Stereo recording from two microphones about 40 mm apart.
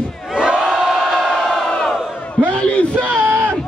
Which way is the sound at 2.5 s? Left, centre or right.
Left.